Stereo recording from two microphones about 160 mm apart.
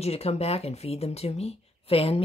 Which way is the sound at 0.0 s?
40° left (ahead or behind).